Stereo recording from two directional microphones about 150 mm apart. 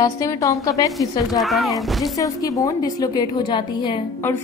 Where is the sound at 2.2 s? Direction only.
25° left (ahead or behind).